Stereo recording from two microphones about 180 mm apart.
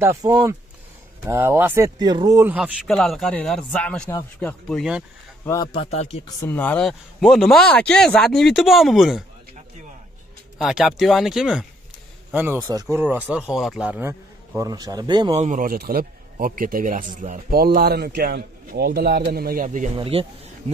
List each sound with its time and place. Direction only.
0.0 s speech: 15° right (ahead or behind)
2.0 s speech: 25° right (ahead or behind)
2.4 s speech: 10° right (ahead or behind)
5.4 s a man's voice: 15° left (ahead or behind)
5.7 s a man's voice: 35° left (ahead or behind)
6.2 s speech: 15° left (ahead or behind)
10.6 s a man's voice: centre (ahead or behind); by 15.3 s 25° right (ahead or behind)
15.3 s speech: 45° right (ahead or behind)
20.0 s speech: 30° right (ahead or behind)